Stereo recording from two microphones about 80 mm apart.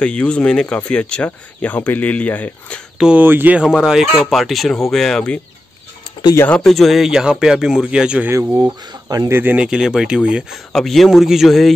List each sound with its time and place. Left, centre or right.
0.0 s speech: centre
3.0 s speech: centre
3.3 s speech: right
3.6 s speech: centre
6.5 s speech: centre
9.3 s speech: right
9.6 s speech: centre
10.7 s speech: centre